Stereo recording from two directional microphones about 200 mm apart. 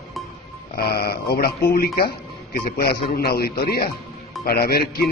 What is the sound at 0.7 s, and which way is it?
Speech, 50° left (ahead or behind).